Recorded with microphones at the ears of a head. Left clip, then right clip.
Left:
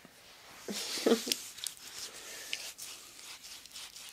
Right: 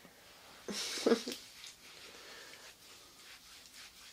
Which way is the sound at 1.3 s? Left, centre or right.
Left.